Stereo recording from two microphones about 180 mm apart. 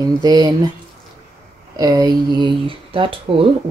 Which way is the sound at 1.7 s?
20° right (ahead or behind).